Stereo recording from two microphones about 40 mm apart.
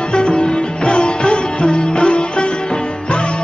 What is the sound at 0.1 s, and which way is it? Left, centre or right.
Sitar, left.